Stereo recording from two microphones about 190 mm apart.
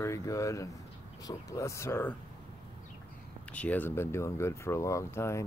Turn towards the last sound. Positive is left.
turn(degrees=15)  # may be behind; listen again after turning